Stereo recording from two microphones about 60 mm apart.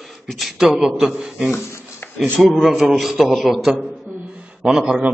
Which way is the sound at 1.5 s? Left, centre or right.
Left.